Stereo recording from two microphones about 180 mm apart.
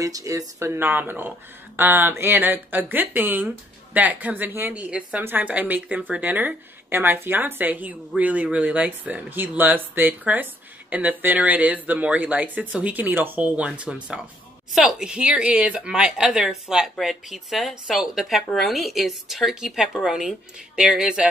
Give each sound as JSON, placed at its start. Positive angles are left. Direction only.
{"t": 0.0, "sound": "speech", "side_deg": -20}